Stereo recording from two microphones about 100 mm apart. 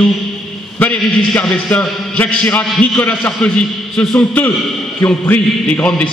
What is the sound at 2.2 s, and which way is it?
A man's voice, 15° left (ahead or behind).